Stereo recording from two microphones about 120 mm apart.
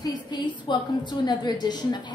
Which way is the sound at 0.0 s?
35° left (ahead or behind).